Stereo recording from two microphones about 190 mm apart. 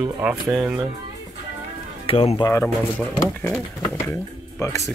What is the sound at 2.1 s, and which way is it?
Speech, 30° left (ahead or behind).